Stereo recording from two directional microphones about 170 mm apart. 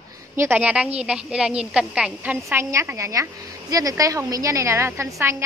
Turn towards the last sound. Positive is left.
turn(degrees=-15)  # may be behind; listen again after turning